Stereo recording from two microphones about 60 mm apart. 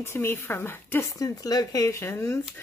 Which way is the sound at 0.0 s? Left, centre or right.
Left.